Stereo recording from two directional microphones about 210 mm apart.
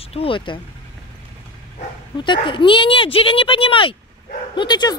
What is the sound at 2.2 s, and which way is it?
Speech, 25° left (ahead or behind).